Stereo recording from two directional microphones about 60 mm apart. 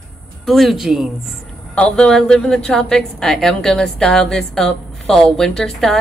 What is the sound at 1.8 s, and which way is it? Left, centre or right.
A woman's voice, centre.